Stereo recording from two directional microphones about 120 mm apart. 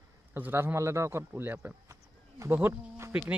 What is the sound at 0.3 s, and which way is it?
A man's voice, 20° right (ahead or behind).